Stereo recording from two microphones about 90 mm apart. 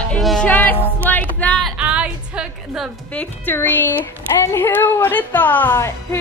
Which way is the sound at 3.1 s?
25° left (ahead or behind).